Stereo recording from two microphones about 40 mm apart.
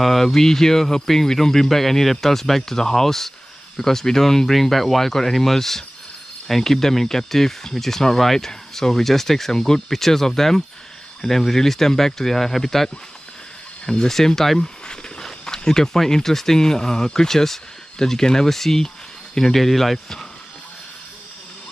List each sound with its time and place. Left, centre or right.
0.0 s speech: centre
14.6 s a sound: centre
15.2 s speech: centre